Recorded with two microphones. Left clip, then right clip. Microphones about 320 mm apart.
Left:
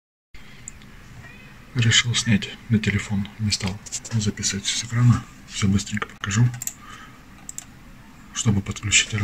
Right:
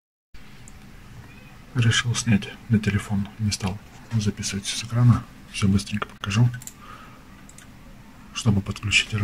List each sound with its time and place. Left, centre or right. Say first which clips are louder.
1.8 s speech: left 4 dB; centre
8.3 s speech: left 1 dB; centre